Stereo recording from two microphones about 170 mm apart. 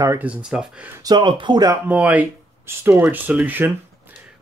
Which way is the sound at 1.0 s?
25° right (ahead or behind).